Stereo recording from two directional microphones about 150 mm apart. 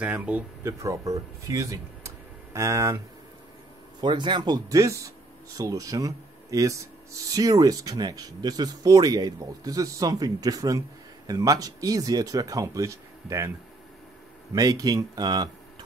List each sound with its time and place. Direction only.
0.0 s speech: 10° right (ahead or behind)
0.8 s speech: 20° right (ahead or behind)
4.0 s speech: 30° right (ahead or behind)
14.5 s speech: 25° right (ahead or behind)